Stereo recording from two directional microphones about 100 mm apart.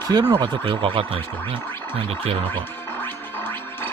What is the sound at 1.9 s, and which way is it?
Music, 70° right (ahead or behind).